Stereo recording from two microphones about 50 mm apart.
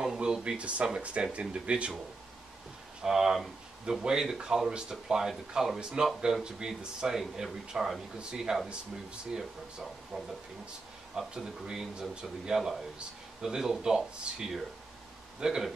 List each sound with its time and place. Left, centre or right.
0.0 s a sound: centre
0.8 s speech: centre
3.0 s speech: centre
8.6 s speech: right
9.4 s speech: centre